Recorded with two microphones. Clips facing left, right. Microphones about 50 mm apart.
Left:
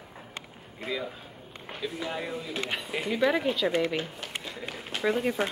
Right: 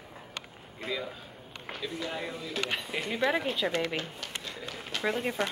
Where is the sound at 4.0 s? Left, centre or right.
Centre.